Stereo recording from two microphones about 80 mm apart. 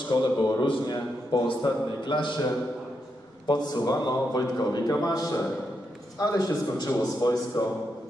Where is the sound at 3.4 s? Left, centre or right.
Left.